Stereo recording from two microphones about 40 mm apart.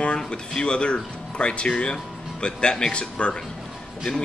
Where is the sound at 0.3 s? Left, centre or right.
Left.